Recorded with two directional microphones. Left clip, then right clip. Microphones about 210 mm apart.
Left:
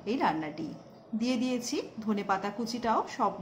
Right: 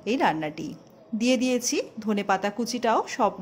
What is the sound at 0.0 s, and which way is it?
A woman's voice, 40° right (ahead or behind).